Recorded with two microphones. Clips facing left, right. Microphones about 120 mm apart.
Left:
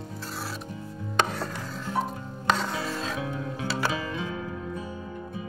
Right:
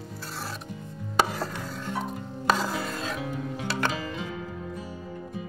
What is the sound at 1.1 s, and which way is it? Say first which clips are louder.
Chopping: right 1 dB; 5° right (ahead or behind).